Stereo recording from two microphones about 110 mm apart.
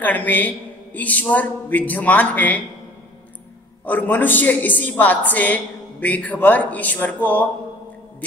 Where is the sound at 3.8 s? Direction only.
15° left (ahead or behind).